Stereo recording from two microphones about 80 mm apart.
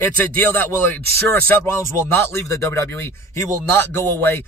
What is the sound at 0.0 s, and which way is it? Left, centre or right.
A man's voice, left.